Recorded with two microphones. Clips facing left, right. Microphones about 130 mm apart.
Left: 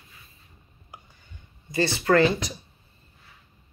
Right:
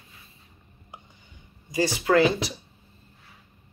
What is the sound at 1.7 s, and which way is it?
Speech, 15° right (ahead or behind).